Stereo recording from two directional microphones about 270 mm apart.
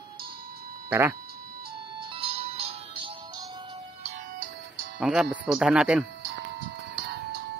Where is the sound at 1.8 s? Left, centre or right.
Centre.